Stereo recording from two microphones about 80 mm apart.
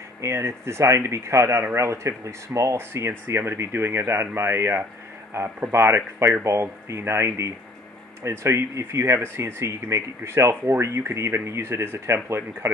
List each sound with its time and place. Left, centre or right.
0.2 s speech: right